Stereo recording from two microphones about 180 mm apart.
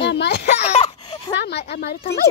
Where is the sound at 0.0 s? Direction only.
70° left (ahead or behind).